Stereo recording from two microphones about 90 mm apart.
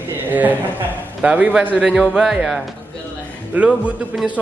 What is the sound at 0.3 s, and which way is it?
A woman's voice, 20° right (ahead or behind).